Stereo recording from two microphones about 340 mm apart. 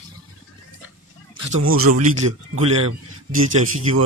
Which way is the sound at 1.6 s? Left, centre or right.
Right.